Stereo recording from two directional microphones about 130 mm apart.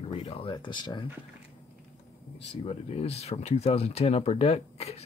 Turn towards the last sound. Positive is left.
turn(degrees=55)  # may be behind; listen again after turning